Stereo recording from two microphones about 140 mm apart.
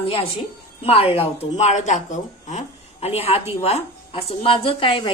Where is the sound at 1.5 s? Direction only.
55° left (ahead or behind).